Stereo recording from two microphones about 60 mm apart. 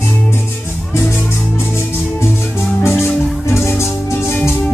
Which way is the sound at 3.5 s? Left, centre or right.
Left.